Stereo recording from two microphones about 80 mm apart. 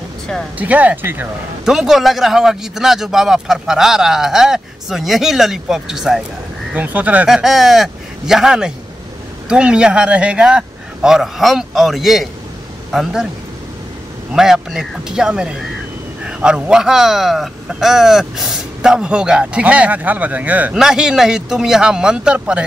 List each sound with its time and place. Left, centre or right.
0.6 s speech: centre
1.6 s a man's voice: centre
6.7 s speech: centre
7.2 s a man's voice: centre
14.3 s speech: centre
20.7 s speech: centre